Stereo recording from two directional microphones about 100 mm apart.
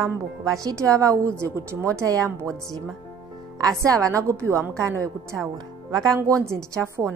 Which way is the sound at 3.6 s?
35° right (ahead or behind).